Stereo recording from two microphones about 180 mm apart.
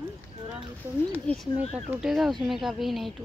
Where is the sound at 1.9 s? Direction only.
5° right (ahead or behind).